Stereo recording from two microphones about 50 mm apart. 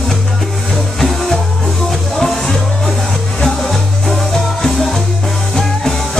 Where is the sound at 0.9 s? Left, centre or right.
Centre.